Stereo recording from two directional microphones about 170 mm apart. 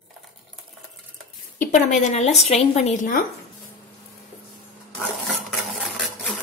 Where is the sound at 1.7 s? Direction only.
45° left (ahead or behind).